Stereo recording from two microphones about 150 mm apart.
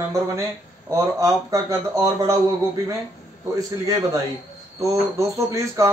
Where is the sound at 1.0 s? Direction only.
20° right (ahead or behind).